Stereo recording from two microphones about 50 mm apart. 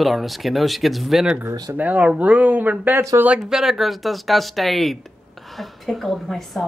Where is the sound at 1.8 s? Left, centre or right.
Right.